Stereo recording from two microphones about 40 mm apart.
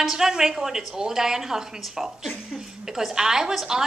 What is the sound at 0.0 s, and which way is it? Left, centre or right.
A woman's voice, centre.